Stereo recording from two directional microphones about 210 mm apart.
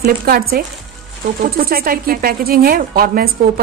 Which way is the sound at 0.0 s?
45° right (ahead or behind).